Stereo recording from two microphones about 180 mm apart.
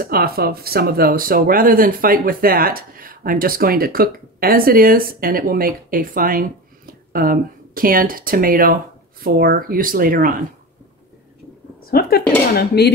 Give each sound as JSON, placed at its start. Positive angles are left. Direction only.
{"t": 0.0, "sound": "speech", "side_deg": -55}
{"t": 11.9, "sound": "dishes", "side_deg": 60}